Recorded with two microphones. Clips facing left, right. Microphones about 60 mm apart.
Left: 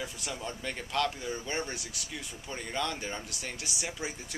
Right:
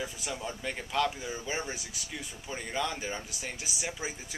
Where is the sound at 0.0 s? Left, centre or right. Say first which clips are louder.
Right 1 dB; centre.